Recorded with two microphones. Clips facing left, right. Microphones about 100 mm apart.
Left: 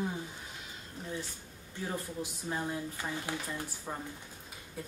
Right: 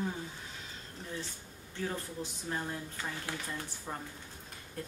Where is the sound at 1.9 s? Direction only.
15° left (ahead or behind).